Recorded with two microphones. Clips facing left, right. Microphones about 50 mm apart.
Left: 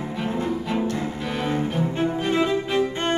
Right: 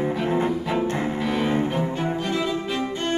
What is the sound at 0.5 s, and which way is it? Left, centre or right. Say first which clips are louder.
Music: right 1 dB; centre.